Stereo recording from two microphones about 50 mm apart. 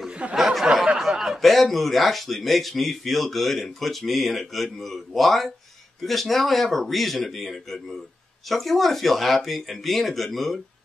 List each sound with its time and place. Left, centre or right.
0.1 s a sound: right
0.9 s snicker: centre
1.4 s speech: centre